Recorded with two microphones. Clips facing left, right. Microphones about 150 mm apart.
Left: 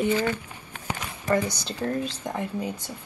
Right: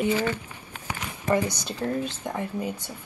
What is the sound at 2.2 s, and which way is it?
Speech, 10° left (ahead or behind).